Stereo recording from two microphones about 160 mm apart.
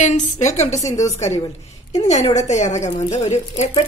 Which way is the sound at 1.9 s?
45° left (ahead or behind).